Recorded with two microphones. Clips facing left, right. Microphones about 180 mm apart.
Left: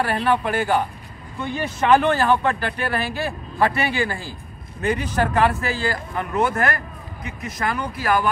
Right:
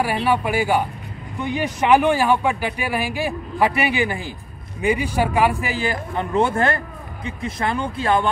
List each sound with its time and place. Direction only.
0.0 s speech: 10° right (ahead or behind); by 8.3 s 25° right (ahead or behind)